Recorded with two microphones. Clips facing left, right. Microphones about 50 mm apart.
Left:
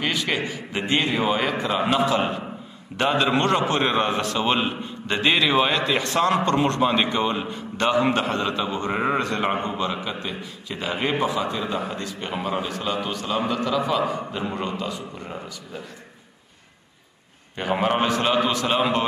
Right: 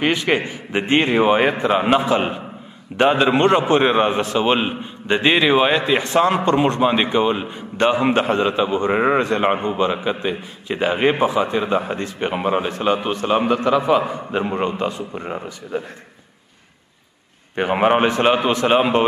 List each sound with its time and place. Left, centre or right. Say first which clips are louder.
0.0 s a man's voice: right 6 dB; right
17.6 s a man's voice: right 6 dB; right